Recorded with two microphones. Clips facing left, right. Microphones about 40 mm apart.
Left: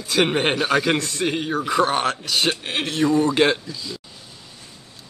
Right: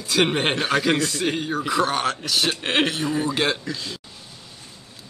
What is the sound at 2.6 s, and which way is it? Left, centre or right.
Speech, right.